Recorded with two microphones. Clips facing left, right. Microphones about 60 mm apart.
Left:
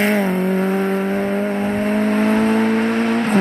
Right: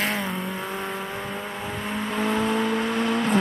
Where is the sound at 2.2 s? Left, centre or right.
Left.